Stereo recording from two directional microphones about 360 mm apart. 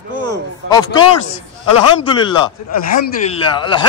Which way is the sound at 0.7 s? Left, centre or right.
Centre.